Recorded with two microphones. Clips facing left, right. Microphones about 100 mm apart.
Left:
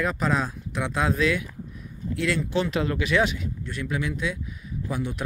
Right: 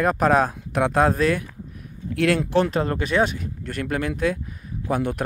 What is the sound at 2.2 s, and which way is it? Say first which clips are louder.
Speech: right 6 dB; 60° right (ahead or behind).